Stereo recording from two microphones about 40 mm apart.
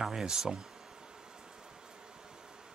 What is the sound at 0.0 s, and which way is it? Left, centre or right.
Speech, centre.